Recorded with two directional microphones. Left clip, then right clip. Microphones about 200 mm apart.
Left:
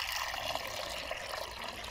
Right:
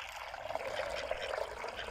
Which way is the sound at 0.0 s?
5° right (ahead or behind).